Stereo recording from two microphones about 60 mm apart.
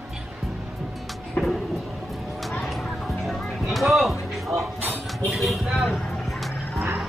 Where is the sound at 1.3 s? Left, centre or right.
Centre.